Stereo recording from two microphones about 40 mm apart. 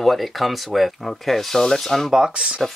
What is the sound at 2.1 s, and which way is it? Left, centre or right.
Speech, centre.